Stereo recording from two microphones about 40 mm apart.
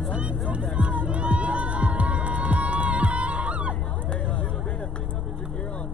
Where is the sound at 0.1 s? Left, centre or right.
Right.